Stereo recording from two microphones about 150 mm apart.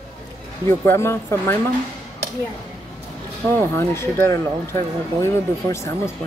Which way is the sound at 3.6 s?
20° left (ahead or behind).